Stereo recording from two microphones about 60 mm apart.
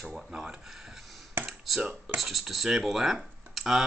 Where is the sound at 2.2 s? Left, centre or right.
Centre.